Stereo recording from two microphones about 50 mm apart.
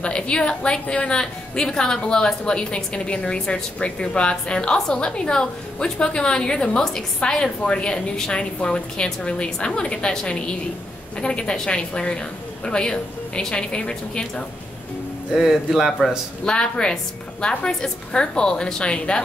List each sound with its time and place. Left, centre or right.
0.0 s a woman's voice: centre
15.3 s speech: centre
16.4 s a woman's voice: centre